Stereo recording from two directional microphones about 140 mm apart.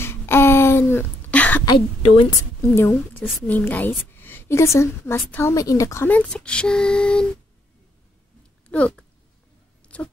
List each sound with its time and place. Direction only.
0.0 s a sound: 15° left (ahead or behind)
1.7 s a woman's voice: 25° left (ahead or behind); by 7.2 s 5° left (ahead or behind)
8.6 s speech: 10° left (ahead or behind)